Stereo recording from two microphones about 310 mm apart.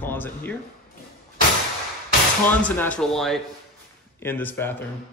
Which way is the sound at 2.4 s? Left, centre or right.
Centre.